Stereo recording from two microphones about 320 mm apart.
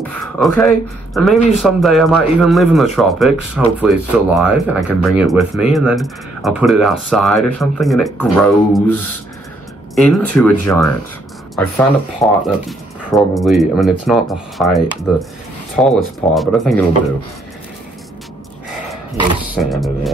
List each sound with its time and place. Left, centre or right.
0.1 s speech: centre
9.9 s speech: centre
19.5 s speech: centre